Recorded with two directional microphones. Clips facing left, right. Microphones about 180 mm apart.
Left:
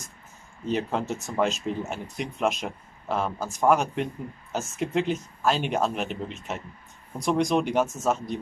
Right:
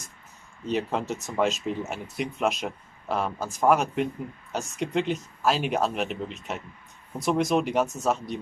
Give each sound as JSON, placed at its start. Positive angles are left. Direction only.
{"t": 0.7, "sound": "speech", "side_deg": 0}